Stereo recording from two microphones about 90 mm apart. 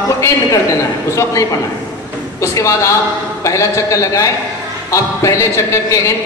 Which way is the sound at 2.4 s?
35° left (ahead or behind).